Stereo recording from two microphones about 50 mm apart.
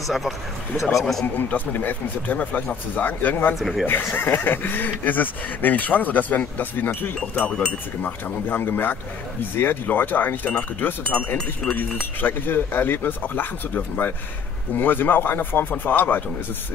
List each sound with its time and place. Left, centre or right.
0.0 s a man's voice: centre
1.2 s speech: left
3.5 s a man's voice: centre
4.1 s speech: left
8.0 s speech: left
12.0 s speech: left